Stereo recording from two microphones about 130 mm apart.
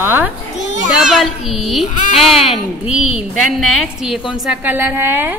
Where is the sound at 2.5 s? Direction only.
50° left (ahead or behind).